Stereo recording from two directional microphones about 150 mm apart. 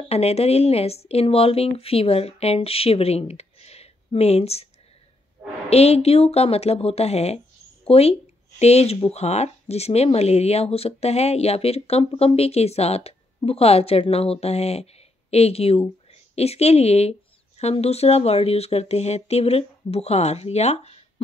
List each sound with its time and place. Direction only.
0.1 s speech: 45° left (ahead or behind)
5.7 s a woman's voice: 45° left (ahead or behind)